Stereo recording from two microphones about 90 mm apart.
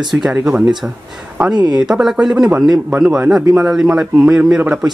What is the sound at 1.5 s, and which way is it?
Speech, 50° right (ahead or behind).